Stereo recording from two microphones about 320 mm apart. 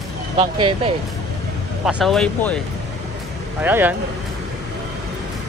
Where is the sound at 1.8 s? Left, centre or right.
Centre.